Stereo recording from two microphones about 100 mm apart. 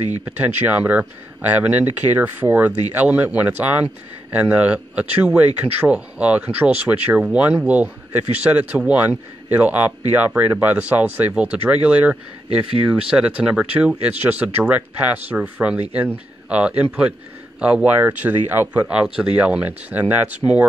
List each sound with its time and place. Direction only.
0.2 s speech: 20° right (ahead or behind)